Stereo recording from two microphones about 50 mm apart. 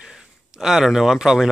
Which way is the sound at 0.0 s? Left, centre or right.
Centre.